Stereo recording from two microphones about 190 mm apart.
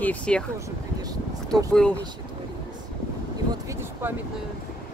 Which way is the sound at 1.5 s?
5° left (ahead or behind).